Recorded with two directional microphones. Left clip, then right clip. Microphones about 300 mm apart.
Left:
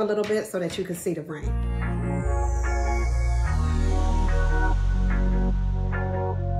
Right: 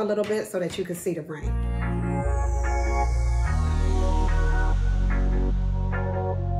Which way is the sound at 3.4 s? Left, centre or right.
Centre.